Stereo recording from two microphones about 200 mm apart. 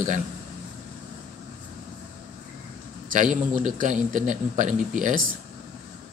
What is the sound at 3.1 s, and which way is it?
Speech, 40° right (ahead or behind).